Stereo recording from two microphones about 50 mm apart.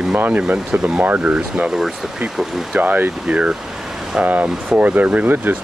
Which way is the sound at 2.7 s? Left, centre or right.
Right.